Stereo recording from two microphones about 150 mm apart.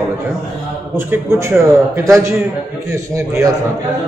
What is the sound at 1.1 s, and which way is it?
A man's voice, 15° right (ahead or behind).